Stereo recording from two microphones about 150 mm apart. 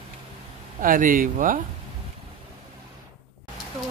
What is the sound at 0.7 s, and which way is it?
Speech, 65° right (ahead or behind).